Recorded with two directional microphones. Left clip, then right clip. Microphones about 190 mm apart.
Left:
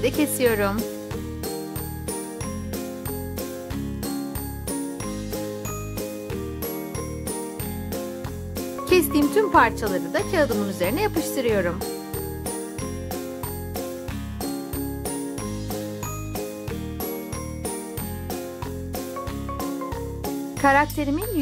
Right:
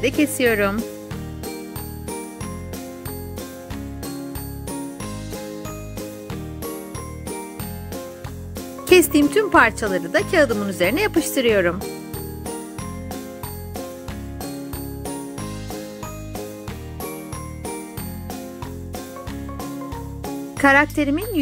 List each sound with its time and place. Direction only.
0.0 s speech: 5° right (ahead or behind)
8.8 s music: 15° right (ahead or behind)
9.3 s speech: 15° right (ahead or behind)
20.6 s speech: 20° right (ahead or behind)